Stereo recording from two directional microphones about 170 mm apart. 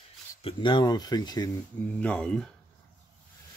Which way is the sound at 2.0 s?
5° left (ahead or behind).